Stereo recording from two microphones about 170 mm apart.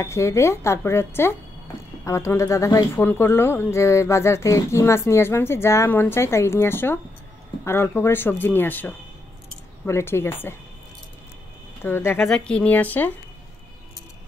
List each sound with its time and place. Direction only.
0.0 s speech: 15° left (ahead or behind)
11.8 s speech: 15° left (ahead or behind)